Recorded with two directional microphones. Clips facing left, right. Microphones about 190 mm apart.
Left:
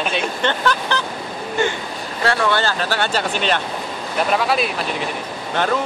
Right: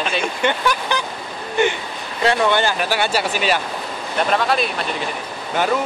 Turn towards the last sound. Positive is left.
turn(degrees=-10)  # may be behind; listen again after turning